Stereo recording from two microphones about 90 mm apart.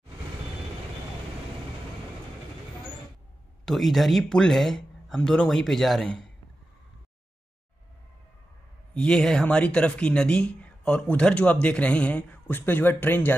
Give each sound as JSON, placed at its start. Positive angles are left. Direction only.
{"t": 3.6, "sound": "speech", "side_deg": 0}
{"t": 8.9, "sound": "speech", "side_deg": 10}